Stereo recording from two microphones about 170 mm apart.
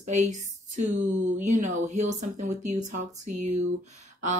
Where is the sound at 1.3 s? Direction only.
45° right (ahead or behind).